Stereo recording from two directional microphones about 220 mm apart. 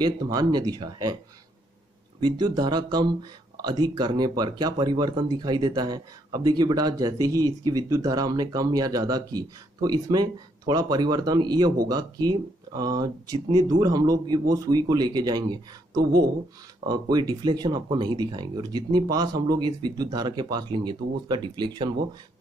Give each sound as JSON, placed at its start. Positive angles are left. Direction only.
{"t": 0.0, "sound": "speech", "side_deg": -20}
{"t": 2.1, "sound": "speech", "side_deg": -20}